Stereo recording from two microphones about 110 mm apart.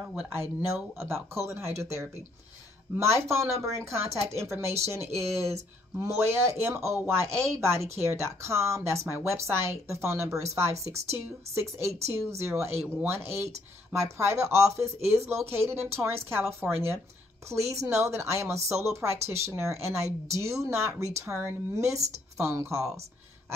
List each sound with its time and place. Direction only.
0.0 s a woman's voice: 15° right (ahead or behind)
3.0 s a woman's voice: 25° right (ahead or behind)